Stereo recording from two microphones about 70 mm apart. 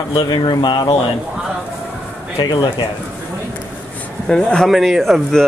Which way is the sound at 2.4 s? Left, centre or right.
Left.